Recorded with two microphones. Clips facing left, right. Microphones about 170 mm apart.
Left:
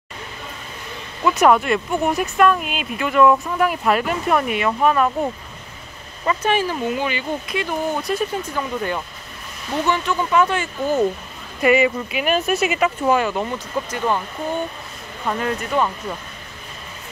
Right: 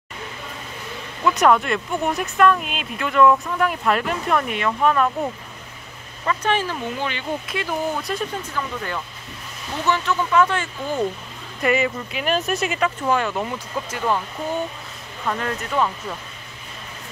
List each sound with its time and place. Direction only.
1.2 s speech: 5° left (ahead or behind)
8.5 s speech: 20° left (ahead or behind); by 14.2 s centre (ahead or behind)
15.2 s speech: 5° left (ahead or behind)